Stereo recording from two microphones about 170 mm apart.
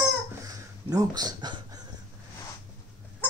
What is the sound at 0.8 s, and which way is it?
Speech, 20° right (ahead or behind).